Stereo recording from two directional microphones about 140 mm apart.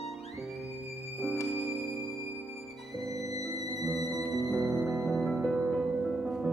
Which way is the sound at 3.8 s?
Centre (ahead or behind).